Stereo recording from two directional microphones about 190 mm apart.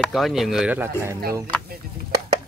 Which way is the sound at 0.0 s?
Centre (ahead or behind).